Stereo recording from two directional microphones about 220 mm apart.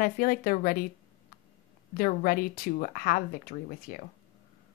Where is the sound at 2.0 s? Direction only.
40° left (ahead or behind).